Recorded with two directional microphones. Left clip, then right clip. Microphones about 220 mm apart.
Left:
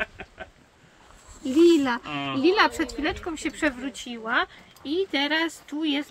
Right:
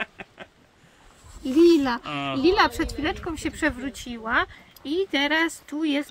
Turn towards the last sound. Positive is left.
turn(degrees=-25)  # may be behind; listen again after turning